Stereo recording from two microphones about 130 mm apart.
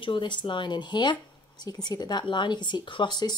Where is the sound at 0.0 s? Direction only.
40° left (ahead or behind).